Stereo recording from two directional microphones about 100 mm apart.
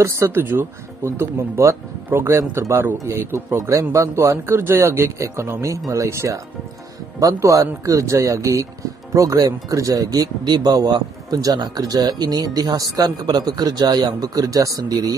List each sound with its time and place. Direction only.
0.0 s speech: 25° right (ahead or behind)
3.5 s speech: 35° right (ahead or behind)